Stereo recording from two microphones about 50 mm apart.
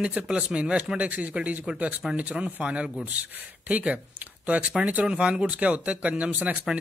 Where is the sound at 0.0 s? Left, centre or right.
Centre.